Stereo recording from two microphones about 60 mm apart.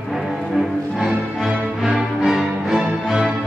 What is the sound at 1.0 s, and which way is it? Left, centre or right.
Music, centre.